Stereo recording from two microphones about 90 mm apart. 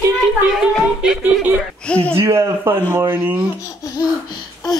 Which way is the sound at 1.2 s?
15° right (ahead or behind).